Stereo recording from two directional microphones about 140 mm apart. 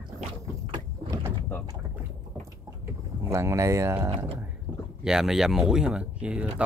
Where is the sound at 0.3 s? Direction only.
25° right (ahead or behind).